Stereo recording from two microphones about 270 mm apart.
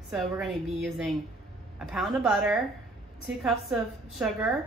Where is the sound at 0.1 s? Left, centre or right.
Centre.